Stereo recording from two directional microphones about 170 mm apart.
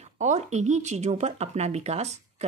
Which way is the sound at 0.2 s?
45° right (ahead or behind).